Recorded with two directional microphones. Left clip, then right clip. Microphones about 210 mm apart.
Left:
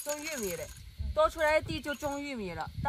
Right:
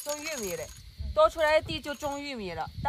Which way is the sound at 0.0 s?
Centre (ahead or behind).